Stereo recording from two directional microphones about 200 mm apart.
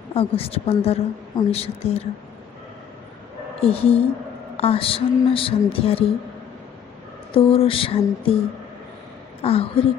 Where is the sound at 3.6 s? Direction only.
30° left (ahead or behind).